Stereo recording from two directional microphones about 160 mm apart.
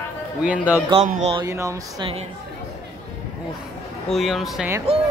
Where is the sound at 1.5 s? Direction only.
20° right (ahead or behind).